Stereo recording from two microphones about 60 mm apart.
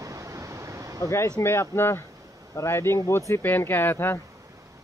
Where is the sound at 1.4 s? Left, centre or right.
Left.